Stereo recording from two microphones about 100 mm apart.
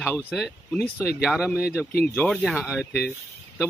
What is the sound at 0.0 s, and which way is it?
Speech, 20° left (ahead or behind).